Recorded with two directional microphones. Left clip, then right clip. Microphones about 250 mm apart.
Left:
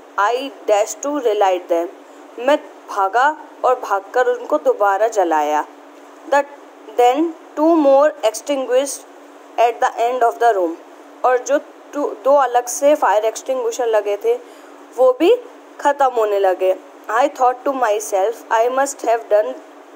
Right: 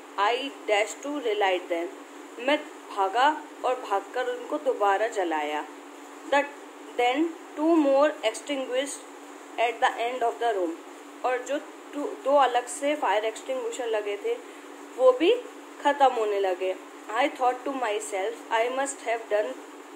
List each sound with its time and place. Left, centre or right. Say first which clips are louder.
0.1 s a man's voice: left 8 dB; left
7.0 s a man's voice: left 11 dB; left